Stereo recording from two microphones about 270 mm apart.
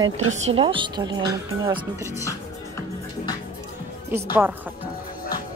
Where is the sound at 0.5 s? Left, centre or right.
Centre.